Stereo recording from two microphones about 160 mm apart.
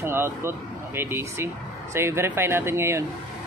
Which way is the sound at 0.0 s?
15° right (ahead or behind).